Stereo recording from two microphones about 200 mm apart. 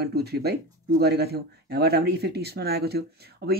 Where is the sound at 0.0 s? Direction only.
55° right (ahead or behind).